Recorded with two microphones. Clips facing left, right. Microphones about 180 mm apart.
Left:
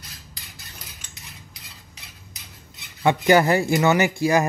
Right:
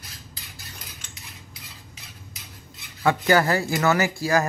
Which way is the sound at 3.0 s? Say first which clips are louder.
Left 3 dB; 20° left (ahead or behind).